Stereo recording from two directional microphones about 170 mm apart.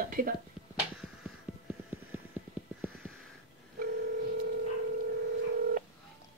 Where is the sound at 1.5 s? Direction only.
10° right (ahead or behind).